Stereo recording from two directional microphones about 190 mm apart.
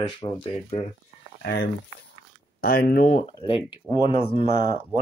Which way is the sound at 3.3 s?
25° left (ahead or behind).